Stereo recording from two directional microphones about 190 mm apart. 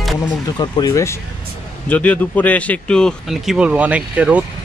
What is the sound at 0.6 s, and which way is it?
Speech, 20° left (ahead or behind).